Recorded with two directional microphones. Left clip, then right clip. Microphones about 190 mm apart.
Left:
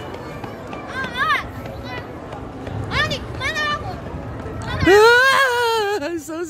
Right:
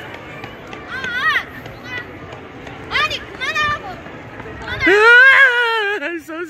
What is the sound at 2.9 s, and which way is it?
Vehicle, 15° left (ahead or behind).